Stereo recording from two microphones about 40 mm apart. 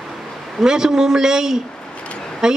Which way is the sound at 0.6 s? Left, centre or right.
Centre.